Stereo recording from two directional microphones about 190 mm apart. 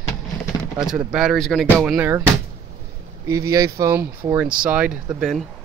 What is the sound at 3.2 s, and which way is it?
Speech, 15° right (ahead or behind).